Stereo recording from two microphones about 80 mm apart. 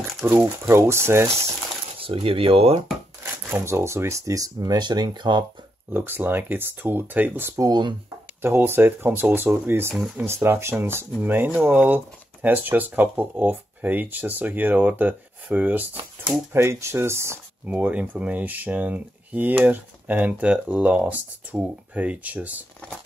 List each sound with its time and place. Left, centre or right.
0.2 s speech: right
3.4 s speech: right
5.9 s speech: right
7.5 s speech: right
8.4 s speech: right
9.9 s speech: centre
10.2 s speech: right
11.5 s speech: centre
16.5 s speech: right
17.6 s speech: centre